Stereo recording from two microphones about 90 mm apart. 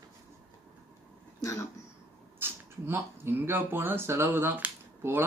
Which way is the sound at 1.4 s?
35° left (ahead or behind).